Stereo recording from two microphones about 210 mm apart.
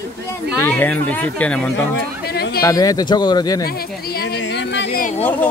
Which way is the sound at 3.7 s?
45° left (ahead or behind).